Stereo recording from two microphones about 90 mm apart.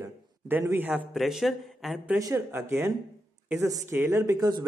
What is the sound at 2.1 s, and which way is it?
Speech, 35° right (ahead or behind).